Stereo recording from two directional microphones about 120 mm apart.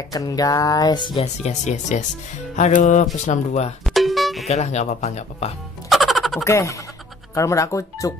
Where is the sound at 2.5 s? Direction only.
75° left (ahead or behind).